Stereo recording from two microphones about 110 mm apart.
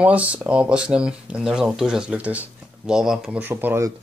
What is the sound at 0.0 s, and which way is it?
Speech, 10° right (ahead or behind).